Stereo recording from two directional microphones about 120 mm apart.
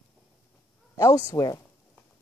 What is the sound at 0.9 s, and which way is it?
Speech, 25° left (ahead or behind).